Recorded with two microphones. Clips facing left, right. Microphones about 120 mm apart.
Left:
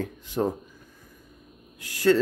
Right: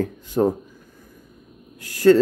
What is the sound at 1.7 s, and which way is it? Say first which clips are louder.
Speech: right 7 dB; 45° right (ahead or behind).